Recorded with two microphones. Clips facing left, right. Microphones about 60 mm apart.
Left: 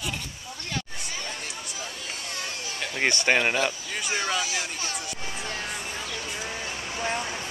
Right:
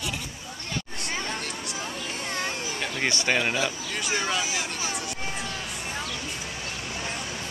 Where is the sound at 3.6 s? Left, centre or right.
Centre.